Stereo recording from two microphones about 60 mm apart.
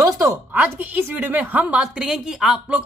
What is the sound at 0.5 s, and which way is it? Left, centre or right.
Speech, right.